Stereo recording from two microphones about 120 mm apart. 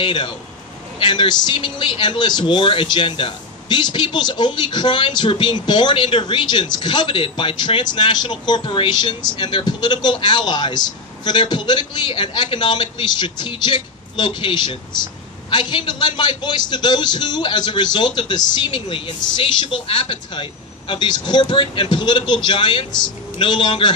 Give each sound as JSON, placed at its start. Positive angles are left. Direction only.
{"t": 0.0, "sound": "a man's voice", "side_deg": 45}